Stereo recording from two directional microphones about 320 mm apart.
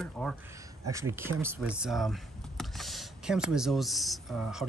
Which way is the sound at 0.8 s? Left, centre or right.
Centre.